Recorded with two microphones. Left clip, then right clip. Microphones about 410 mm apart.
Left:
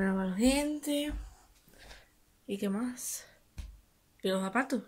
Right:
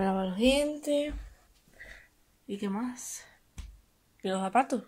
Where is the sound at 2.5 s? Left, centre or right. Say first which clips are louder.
Even; centre.